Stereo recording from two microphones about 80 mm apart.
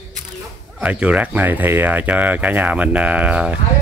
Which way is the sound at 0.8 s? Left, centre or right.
Centre.